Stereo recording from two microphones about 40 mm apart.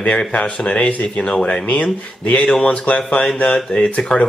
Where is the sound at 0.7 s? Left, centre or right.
Left.